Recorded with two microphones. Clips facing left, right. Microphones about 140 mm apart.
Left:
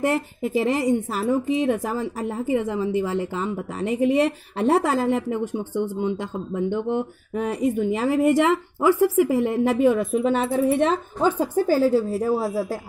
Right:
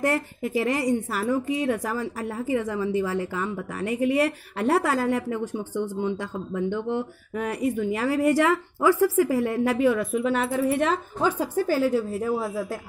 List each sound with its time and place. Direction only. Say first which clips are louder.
0.0 s a woman's voice: left 2 dB; 20° left (ahead or behind)
11.3 s a woman's voice: left 4 dB; 35° left (ahead or behind)